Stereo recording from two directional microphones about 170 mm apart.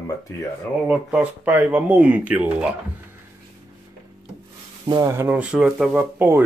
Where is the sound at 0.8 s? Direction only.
5° right (ahead or behind).